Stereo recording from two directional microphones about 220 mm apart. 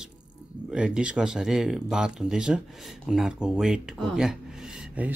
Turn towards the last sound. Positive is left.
turn(degrees=-5)  # may be behind; listen again after turning